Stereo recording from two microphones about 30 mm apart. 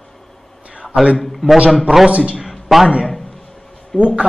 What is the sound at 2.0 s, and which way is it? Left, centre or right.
Speech, right.